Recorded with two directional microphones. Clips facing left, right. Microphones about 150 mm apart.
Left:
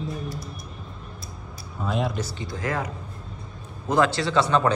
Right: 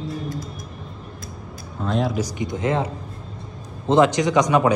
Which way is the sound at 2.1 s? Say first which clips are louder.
Right 6 dB; 15° right (ahead or behind).